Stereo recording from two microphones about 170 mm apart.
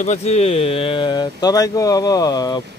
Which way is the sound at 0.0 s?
40° left (ahead or behind).